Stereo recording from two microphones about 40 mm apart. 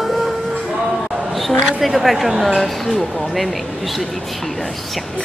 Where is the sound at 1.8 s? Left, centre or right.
Centre.